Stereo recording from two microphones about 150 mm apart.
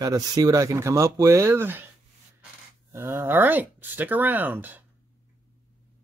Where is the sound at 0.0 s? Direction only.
25° right (ahead or behind).